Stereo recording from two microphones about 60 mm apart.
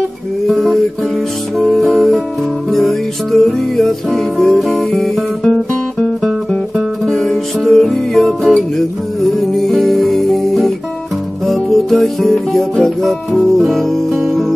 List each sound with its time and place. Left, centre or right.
0.5 s music: centre
7.2 s music: centre